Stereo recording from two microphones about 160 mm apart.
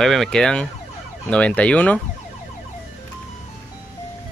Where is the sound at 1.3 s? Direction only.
5° left (ahead or behind).